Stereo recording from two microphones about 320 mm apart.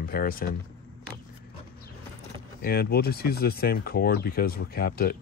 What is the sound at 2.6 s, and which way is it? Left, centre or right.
Speech, left.